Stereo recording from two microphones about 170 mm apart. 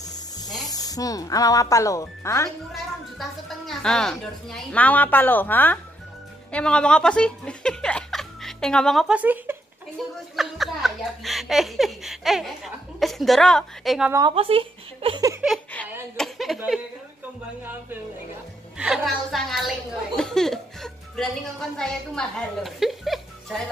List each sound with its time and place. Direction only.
0.1 s speech: 25° left (ahead or behind)
2.7 s speech: centre (ahead or behind)
10.0 s a woman's voice: centre (ahead or behind)
14.3 s speech: 35° right (ahead or behind)
16.2 s a sound: centre (ahead or behind)
16.5 s a woman's voice: 5° right (ahead or behind)
18.8 s a woman's voice: centre (ahead or behind)